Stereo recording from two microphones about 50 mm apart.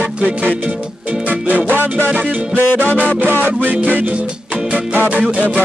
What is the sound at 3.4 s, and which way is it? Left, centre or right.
Music, right.